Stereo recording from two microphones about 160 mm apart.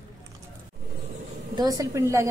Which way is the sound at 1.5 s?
25° right (ahead or behind).